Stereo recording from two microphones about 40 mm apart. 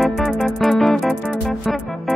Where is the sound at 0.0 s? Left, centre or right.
Centre.